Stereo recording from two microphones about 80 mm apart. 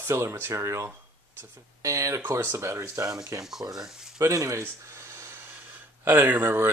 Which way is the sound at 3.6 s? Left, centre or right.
Right.